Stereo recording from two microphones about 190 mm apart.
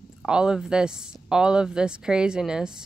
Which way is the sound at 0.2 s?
5° right (ahead or behind).